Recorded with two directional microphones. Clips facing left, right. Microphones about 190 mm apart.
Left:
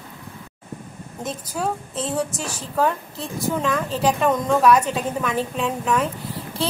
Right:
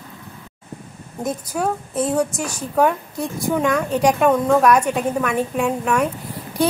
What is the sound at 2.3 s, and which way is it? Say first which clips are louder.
A woman's voice: right 4 dB; 15° right (ahead or behind).